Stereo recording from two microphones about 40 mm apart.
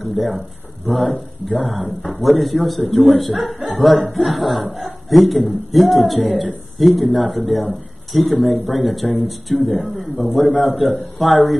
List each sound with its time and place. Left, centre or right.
0.0 s a man's voice: centre